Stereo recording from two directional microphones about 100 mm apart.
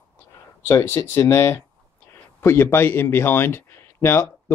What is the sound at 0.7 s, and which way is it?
Speech, 25° left (ahead or behind).